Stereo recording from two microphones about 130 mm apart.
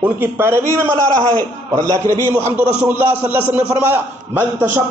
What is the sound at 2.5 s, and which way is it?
A man's voice, 15° right (ahead or behind).